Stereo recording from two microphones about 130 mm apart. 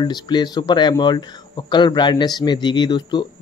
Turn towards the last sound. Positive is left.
turn(degrees=35)  # may be behind; listen again after turning